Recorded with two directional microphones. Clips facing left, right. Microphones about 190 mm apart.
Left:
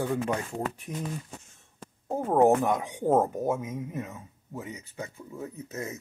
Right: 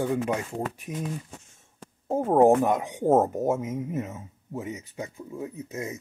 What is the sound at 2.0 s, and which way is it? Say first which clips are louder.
Speech: right 3 dB; 20° right (ahead or behind).